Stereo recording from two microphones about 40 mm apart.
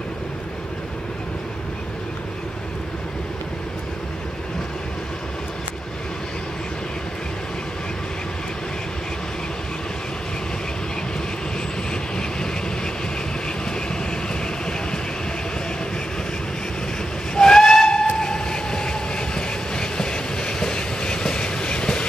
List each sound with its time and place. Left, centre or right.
17.4 s train: centre